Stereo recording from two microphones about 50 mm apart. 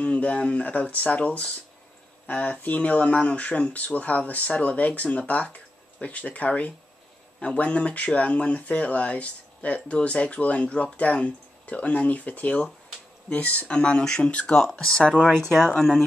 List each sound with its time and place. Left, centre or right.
0.0 s speech: left
14.5 s speech: centre